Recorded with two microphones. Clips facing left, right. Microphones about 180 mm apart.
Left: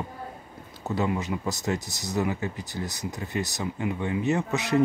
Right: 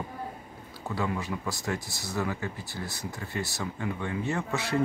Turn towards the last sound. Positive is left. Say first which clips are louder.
# left 5 dB
turn(degrees=20)  # may be behind; listen again after turning